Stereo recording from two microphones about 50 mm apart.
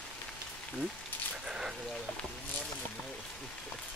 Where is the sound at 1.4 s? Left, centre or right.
Centre.